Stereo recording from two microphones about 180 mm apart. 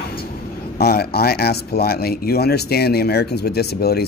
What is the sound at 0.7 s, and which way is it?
Speech, 60° left (ahead or behind).